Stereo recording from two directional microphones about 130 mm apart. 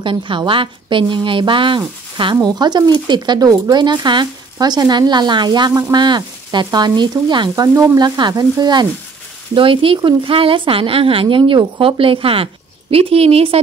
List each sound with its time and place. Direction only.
0.0 s speech: 40° right (ahead or behind)
9.5 s speech: 40° right (ahead or behind)